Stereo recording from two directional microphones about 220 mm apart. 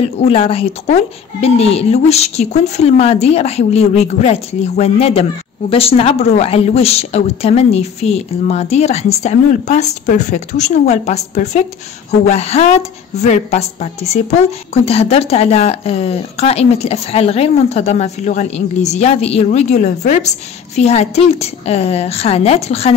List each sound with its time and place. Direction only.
0.2 s speech: 25° left (ahead or behind)